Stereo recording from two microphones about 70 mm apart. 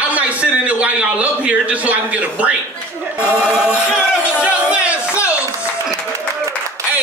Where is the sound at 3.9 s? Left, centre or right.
Centre.